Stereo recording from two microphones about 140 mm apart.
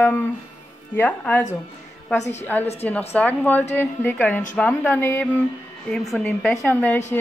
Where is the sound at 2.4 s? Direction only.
10° left (ahead or behind).